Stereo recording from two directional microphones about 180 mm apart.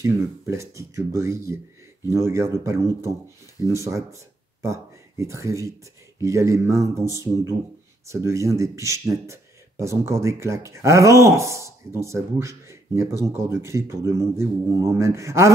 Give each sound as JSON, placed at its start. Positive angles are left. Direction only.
{"t": 0.0, "sound": "speech", "side_deg": -15}
{"t": 8.1, "sound": "speech", "side_deg": -15}